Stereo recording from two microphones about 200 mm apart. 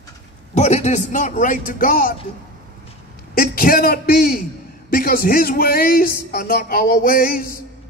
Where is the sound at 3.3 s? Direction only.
45° left (ahead or behind).